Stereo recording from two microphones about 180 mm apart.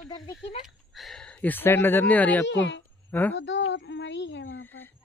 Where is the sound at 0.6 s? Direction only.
Centre (ahead or behind).